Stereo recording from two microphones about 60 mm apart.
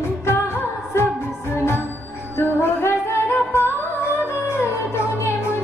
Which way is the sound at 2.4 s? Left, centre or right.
Left.